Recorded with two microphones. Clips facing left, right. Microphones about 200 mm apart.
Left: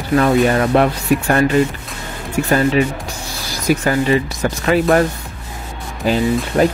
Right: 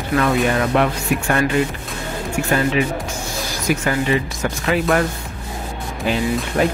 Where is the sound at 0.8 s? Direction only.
35° left (ahead or behind).